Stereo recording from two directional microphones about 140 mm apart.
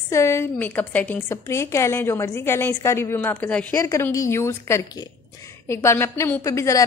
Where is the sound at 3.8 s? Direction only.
20° left (ahead or behind).